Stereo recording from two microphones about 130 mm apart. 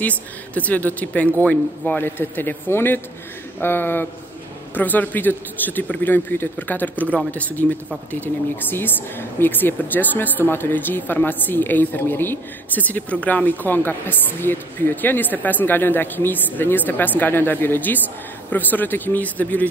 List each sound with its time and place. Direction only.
0.6 s speech: 10° left (ahead or behind)